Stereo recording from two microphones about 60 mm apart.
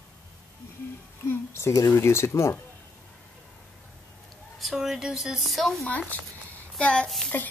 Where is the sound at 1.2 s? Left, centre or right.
Left.